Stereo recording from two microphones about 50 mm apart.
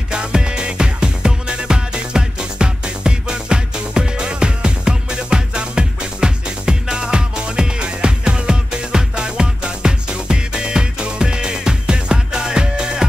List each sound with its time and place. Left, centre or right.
0.1 s music: centre